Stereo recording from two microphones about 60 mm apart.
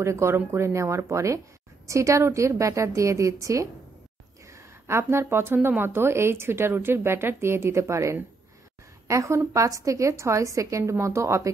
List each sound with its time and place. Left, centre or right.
0.0 s a woman's voice: right
4.5 s a woman's voice: right